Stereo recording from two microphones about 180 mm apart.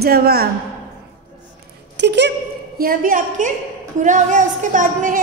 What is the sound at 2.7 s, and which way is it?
A woman's voice, 55° right (ahead or behind).